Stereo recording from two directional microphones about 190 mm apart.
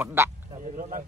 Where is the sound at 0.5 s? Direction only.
45° right (ahead or behind).